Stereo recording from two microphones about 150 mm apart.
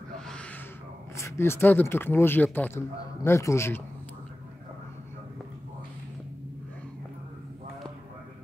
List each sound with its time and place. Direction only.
1.1 s speech: 20° left (ahead or behind)